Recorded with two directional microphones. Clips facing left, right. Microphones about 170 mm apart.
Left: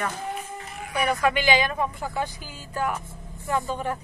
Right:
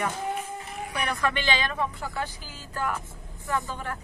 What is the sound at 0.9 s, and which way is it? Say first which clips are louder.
Speech: left 5 dB; 10° left (ahead or behind).